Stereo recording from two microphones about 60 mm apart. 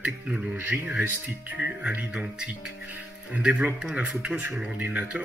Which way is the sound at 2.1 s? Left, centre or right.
Centre.